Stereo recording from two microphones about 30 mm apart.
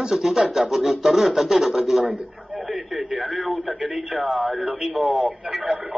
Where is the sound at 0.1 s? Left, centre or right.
Centre.